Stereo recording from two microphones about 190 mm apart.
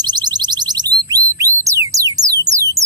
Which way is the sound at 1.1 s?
15° right (ahead or behind).